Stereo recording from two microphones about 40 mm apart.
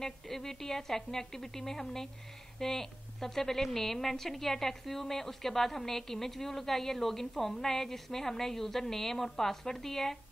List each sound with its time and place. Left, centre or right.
0.0 s speech: centre